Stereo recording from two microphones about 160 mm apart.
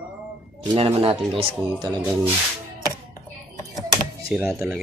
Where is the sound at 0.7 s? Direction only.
35° right (ahead or behind).